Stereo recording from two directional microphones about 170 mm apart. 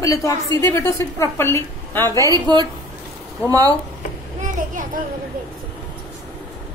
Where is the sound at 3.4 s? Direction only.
20° right (ahead or behind).